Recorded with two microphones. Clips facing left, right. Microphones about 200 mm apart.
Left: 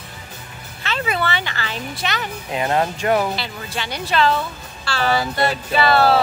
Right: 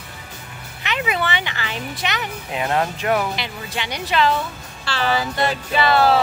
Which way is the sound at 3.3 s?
15° right (ahead or behind).